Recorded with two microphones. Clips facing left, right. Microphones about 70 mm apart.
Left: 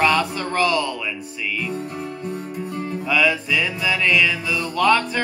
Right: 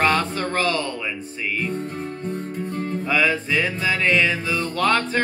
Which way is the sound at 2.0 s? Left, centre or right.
Right.